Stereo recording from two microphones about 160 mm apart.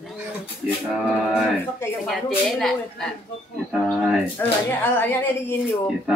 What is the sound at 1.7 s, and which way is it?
Speech, 15° left (ahead or behind).